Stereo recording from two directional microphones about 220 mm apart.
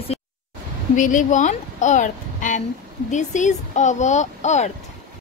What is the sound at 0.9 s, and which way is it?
Speech, 35° left (ahead or behind).